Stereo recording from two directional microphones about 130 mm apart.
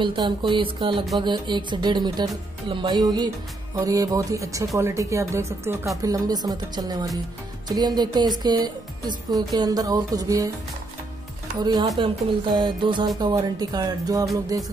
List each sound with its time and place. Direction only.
0.0 s speech: 40° right (ahead or behind)
11.6 s speech: 35° right (ahead or behind)